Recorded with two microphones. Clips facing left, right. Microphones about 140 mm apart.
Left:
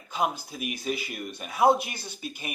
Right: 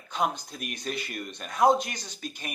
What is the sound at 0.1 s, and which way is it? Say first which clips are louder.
A man's voice: even; 5° left (ahead or behind).